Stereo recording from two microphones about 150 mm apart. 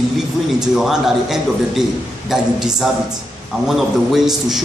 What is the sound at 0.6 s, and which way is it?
A man's voice, 5° right (ahead or behind).